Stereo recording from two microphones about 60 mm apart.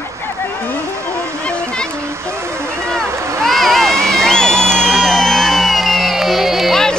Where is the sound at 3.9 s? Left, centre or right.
Right.